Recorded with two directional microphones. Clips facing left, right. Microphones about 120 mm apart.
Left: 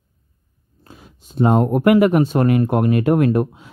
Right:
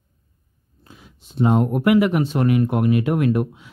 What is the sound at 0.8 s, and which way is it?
Speech, 45° left (ahead or behind).